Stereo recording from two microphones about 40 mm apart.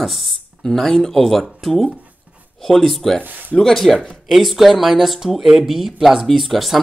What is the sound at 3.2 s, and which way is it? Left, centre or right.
Speech, right.